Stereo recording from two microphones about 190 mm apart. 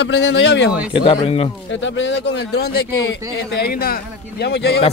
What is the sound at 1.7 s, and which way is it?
Speech, 75° left (ahead or behind).